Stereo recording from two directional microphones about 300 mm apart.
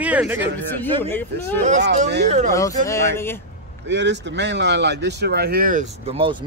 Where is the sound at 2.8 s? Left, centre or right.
Centre.